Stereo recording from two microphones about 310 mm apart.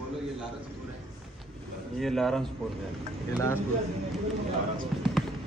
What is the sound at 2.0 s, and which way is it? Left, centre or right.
Speech, centre.